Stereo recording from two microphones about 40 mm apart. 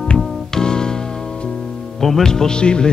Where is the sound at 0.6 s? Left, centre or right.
Centre.